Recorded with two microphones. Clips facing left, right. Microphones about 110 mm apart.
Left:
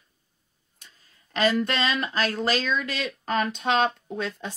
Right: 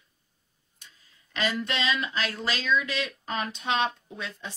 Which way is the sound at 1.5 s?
45° left (ahead or behind).